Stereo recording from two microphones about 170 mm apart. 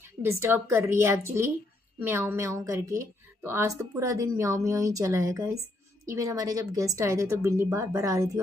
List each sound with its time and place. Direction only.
0.2 s a woman's voice: 15° right (ahead or behind)